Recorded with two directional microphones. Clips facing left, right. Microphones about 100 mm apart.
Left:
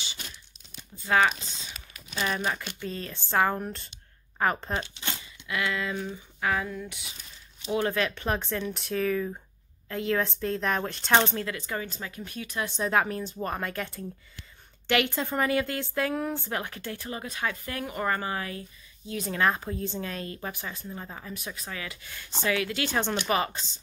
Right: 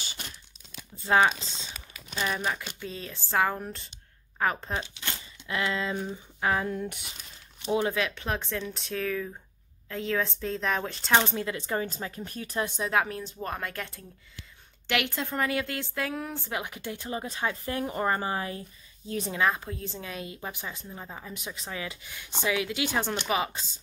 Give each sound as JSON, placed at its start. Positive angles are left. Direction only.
{"t": 1.0, "sound": "speech", "side_deg": -25}
{"t": 2.1, "sound": "speech", "side_deg": 0}
{"t": 5.5, "sound": "speech", "side_deg": -25}
{"t": 6.9, "sound": "speech", "side_deg": -55}
{"t": 7.9, "sound": "speech", "side_deg": 0}
{"t": 11.4, "sound": "speech", "side_deg": -25}
{"t": 12.7, "sound": "speech", "side_deg": 0}
{"t": 16.6, "sound": "speech", "side_deg": -15}
{"t": 19.3, "sound": "speech", "side_deg": 0}
{"t": 20.8, "sound": "speech", "side_deg": -5}
{"t": 21.5, "sound": "speech", "side_deg": -25}